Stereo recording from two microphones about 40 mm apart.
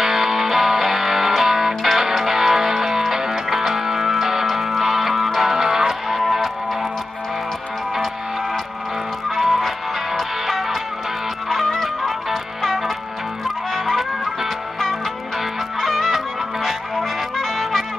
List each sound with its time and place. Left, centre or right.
0.0 s music: centre
9.3 s music: centre